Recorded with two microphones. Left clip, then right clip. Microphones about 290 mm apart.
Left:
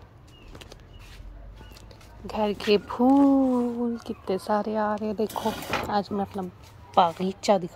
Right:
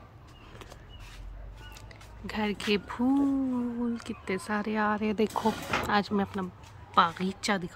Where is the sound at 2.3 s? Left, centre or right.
Centre.